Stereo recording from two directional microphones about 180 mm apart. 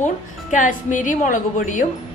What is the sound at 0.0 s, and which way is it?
A woman's voice, 45° left (ahead or behind).